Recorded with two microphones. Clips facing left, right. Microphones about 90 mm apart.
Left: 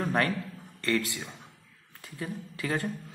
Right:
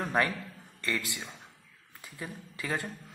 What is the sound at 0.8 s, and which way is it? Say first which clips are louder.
Speech: left 5 dB; 15° right (ahead or behind).